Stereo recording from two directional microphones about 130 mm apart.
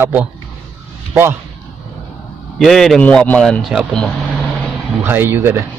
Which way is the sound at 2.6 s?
Centre (ahead or behind).